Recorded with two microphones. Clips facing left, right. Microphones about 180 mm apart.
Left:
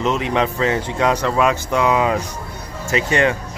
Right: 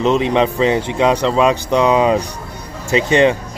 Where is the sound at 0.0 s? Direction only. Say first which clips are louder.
Right 5 dB; 20° right (ahead or behind).